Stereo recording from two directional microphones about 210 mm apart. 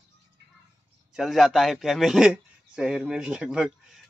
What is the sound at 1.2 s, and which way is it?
A man's voice, centre (ahead or behind).